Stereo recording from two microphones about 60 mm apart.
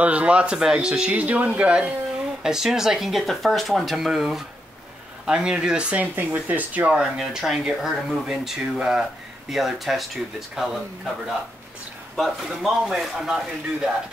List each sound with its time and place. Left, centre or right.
0.0 s speech: right
6.1 s speech: right
6.9 s speech: centre
9.5 s speech: centre
12.2 s speech: centre